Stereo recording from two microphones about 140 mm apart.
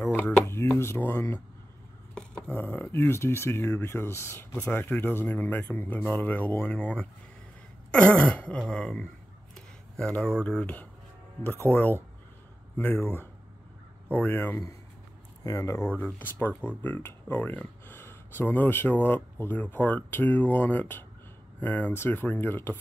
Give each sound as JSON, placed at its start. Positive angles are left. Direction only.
{"t": 0.0, "sound": "a sound", "side_deg": 15}
{"t": 2.5, "sound": "speech", "side_deg": 15}
{"t": 14.1, "sound": "speech", "side_deg": 10}
{"t": 15.4, "sound": "speech", "side_deg": 25}
{"t": 16.2, "sound": "speech", "side_deg": 10}